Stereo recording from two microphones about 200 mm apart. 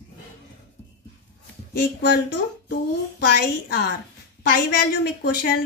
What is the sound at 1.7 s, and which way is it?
Speech, 55° left (ahead or behind).